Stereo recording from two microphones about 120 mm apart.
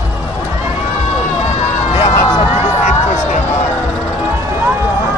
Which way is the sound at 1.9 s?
50° left (ahead or behind).